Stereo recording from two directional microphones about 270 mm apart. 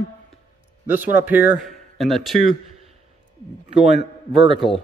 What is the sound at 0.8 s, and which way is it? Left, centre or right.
A man's voice, centre.